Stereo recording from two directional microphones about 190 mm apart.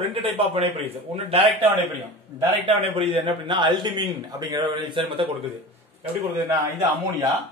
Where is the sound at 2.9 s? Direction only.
30° right (ahead or behind).